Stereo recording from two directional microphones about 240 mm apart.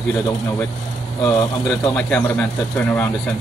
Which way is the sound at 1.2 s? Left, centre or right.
Centre.